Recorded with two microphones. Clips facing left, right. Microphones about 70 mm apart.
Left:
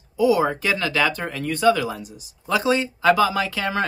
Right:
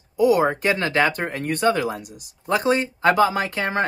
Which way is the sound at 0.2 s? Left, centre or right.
Right.